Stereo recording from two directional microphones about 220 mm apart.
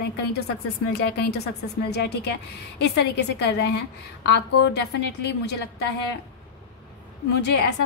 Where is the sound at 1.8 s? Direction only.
50° left (ahead or behind).